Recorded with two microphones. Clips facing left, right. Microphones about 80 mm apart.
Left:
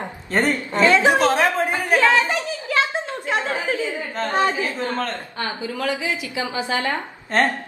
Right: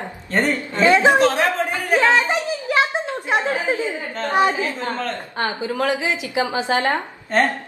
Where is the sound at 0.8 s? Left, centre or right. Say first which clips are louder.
Right 2 dB; right.